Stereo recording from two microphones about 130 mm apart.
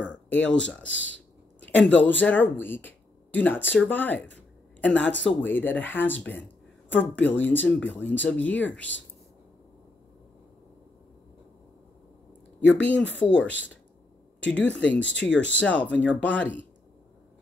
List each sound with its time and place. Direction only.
0.3 s speech: 10° left (ahead or behind)
12.5 s speech: 10° left (ahead or behind)
13.2 s speech: 40° left (ahead or behind)
14.5 s speech: 10° left (ahead or behind)